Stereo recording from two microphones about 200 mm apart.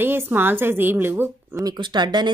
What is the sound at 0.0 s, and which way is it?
Speech, 10° right (ahead or behind).